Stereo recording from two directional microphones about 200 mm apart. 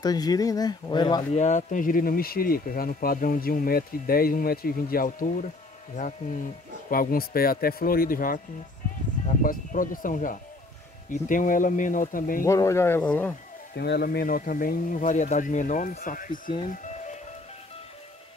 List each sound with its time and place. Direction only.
0.0 s speech: 20° left (ahead or behind)
1.3 s speech: 35° left (ahead or behind)
9.4 s speech: 45° left (ahead or behind)
12.4 s speech: 15° left (ahead or behind)
13.7 s speech: 55° left (ahead or behind)
16.6 s music: 40° left (ahead or behind)